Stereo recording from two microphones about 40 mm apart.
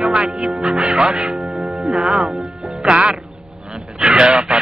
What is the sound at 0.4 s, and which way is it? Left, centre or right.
Speech, centre.